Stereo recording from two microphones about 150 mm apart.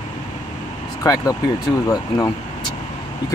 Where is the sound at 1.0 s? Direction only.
25° left (ahead or behind).